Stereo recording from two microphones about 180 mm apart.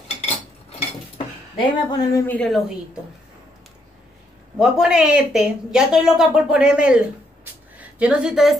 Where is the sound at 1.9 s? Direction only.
20° left (ahead or behind).